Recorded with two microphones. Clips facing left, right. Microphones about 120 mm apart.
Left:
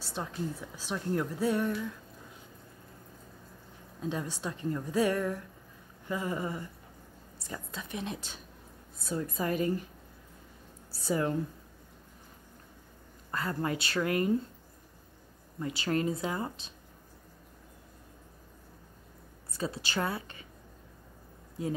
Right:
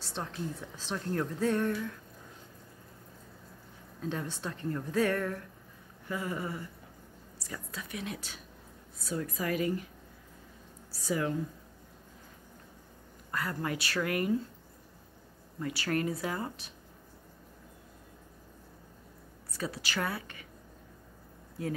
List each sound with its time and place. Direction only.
0.0 s speech: 5° left (ahead or behind)
4.0 s a woman's voice: 15° left (ahead or behind); by 9.7 s 30° left (ahead or behind)
10.9 s a woman's voice: 30° left (ahead or behind)
13.3 s a woman's voice: 25° left (ahead or behind)
15.6 s a woman's voice: 20° left (ahead or behind)
19.5 s a woman's voice: 25° left (ahead or behind)
21.6 s a woman's voice: 20° left (ahead or behind)